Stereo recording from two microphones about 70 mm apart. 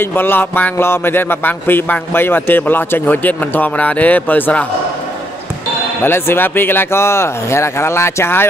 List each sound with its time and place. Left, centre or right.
0.0 s speech: left
6.0 s speech: left